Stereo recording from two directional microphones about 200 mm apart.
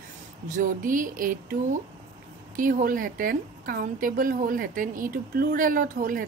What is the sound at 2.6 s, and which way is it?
A woman's voice, 45° right (ahead or behind).